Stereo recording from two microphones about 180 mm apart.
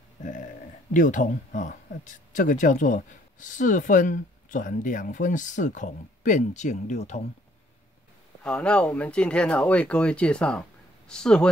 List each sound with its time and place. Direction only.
0.2 s a sound: 45° left (ahead or behind)
0.9 s speech: 45° left (ahead or behind)
8.5 s speech: 5° left (ahead or behind)